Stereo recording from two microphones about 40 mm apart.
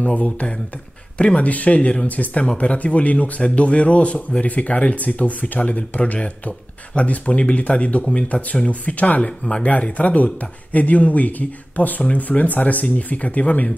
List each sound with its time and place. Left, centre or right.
0.0 s speech: left
9.2 s speech: left